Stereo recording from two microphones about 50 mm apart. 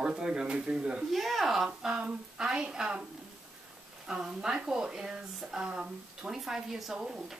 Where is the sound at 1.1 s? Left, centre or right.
Centre.